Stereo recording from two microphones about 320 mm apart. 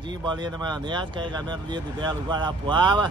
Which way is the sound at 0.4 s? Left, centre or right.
Centre.